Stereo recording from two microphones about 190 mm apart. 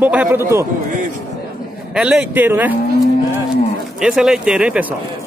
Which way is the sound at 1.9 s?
5° right (ahead or behind).